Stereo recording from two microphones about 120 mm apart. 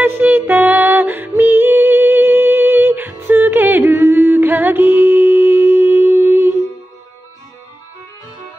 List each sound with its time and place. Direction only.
0.0 s female singing: 15° right (ahead or behind)